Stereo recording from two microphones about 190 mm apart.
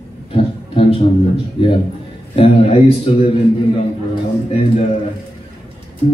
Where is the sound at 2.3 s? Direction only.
30° left (ahead or behind).